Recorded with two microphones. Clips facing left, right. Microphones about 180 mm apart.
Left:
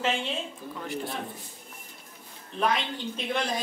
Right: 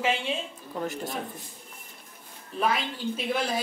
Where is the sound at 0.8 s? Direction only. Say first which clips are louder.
Right 1 dB; 45° right (ahead or behind).